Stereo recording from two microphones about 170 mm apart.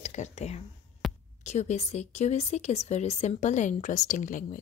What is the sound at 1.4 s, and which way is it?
A woman's voice, 40° left (ahead or behind).